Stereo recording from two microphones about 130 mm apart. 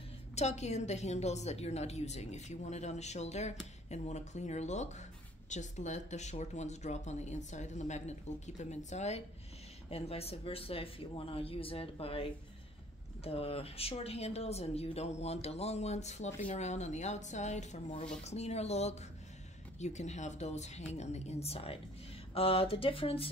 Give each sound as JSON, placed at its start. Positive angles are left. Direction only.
{"t": 0.4, "sound": "speech", "side_deg": 60}